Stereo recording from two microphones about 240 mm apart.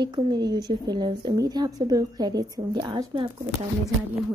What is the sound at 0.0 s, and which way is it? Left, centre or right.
Speech, centre.